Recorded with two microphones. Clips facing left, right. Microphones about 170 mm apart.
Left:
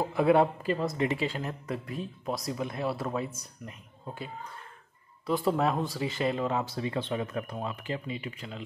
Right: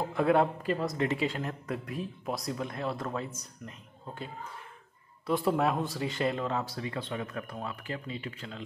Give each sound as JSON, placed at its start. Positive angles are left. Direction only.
{"t": 0.1, "sound": "speech", "side_deg": 5}
{"t": 6.6, "sound": "speech", "side_deg": 25}